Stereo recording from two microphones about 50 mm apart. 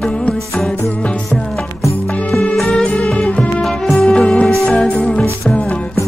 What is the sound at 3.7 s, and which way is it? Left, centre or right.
Music, centre.